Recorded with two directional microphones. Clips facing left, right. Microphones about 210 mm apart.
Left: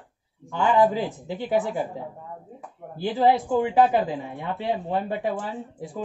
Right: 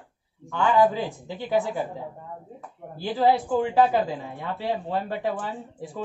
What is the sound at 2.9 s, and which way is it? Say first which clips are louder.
Speech: left 1 dB; 20° left (ahead or behind).